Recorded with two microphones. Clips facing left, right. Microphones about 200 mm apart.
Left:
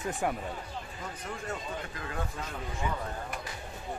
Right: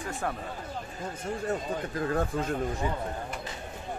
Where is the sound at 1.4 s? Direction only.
40° right (ahead or behind).